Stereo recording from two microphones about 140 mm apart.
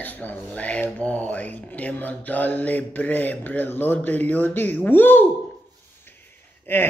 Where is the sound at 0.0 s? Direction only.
10° left (ahead or behind).